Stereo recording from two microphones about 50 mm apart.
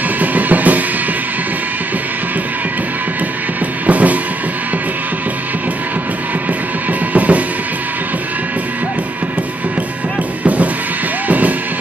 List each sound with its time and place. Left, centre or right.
0.2 s music: right
3.8 s music: right
7.2 s drum kit: right
10.4 s music: right